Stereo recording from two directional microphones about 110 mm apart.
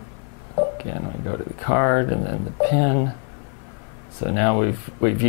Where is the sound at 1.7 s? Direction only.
15° left (ahead or behind).